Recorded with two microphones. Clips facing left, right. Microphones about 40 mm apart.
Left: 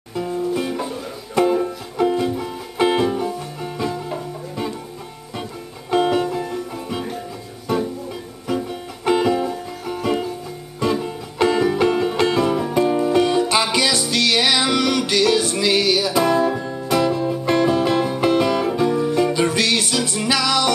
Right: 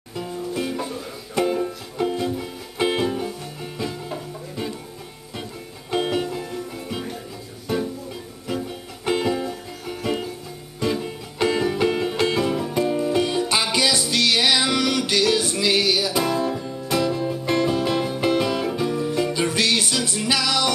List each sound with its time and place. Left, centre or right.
0.6 s music: centre
5.9 s music: centre
8.5 s music: centre